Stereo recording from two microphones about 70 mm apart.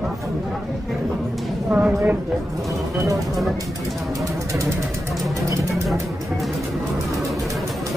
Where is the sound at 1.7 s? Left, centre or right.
Right.